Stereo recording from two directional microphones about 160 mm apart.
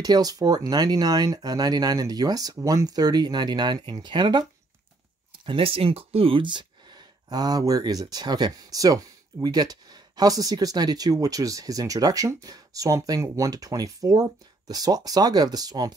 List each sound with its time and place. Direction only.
0.0 s speech: 25° right (ahead or behind)